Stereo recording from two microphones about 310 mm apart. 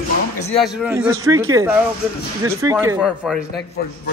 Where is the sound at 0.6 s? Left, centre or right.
Centre.